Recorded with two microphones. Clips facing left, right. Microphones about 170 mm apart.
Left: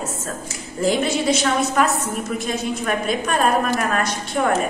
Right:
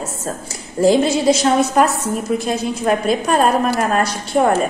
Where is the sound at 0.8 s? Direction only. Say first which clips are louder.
Right 6 dB; 35° right (ahead or behind).